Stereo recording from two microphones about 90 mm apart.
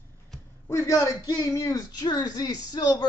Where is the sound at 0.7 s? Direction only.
35° left (ahead or behind).